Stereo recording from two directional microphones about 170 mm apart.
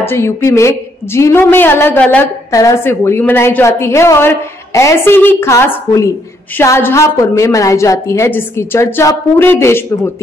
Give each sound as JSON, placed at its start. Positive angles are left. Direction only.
{"t": 0.0, "sound": "a woman's voice", "side_deg": 15}